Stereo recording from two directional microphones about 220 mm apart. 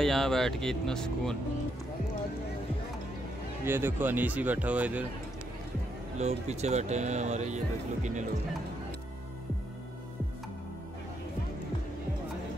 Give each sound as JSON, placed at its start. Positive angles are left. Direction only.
{"t": 0.0, "sound": "speech", "side_deg": 0}
{"t": 3.6, "sound": "speech", "side_deg": -10}
{"t": 6.1, "sound": "speech", "side_deg": -30}